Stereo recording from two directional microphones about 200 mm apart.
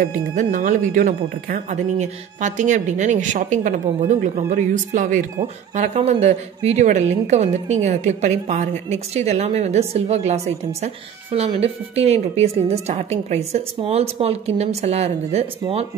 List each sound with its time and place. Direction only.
0.0 s speech: 45° right (ahead or behind)